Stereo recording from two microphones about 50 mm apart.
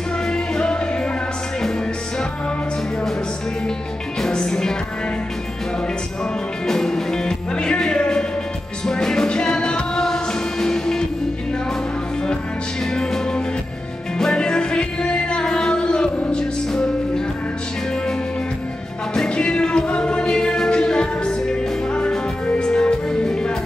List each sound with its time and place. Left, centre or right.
0.3 s music: centre
4.2 s music: centre
6.7 s music: centre
12.9 s music: centre
19.1 s music: centre